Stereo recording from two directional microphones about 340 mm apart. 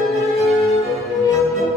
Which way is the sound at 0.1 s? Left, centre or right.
Centre.